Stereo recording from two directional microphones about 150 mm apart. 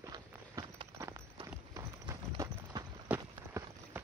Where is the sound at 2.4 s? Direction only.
20° right (ahead or behind).